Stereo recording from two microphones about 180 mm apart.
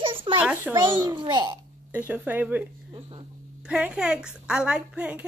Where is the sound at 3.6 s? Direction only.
5° right (ahead or behind).